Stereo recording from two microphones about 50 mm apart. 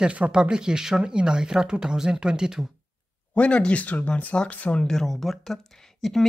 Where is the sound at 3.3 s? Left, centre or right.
Left.